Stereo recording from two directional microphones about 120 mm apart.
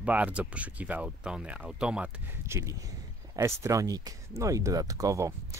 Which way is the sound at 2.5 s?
25° right (ahead or behind).